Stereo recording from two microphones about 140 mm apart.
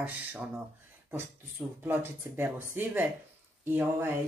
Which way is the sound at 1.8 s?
15° right (ahead or behind).